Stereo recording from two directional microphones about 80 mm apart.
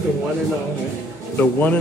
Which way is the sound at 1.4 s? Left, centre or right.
Left.